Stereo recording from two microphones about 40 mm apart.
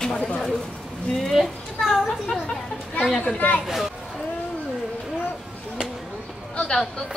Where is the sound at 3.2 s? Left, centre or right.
Left.